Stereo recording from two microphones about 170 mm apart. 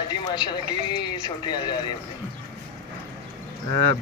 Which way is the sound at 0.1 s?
25° left (ahead or behind).